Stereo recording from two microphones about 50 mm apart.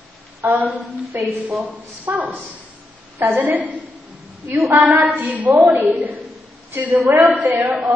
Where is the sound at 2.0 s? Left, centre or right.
Right.